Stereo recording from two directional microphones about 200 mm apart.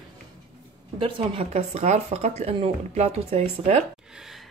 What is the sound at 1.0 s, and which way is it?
Speech, 30° right (ahead or behind).